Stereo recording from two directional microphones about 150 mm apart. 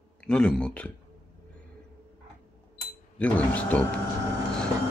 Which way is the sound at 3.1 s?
10° left (ahead or behind).